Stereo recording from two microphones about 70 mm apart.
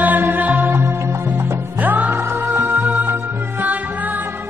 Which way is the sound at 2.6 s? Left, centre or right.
Right.